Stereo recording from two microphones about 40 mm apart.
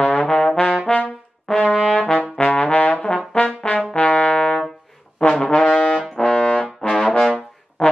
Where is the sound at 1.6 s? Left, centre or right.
Left.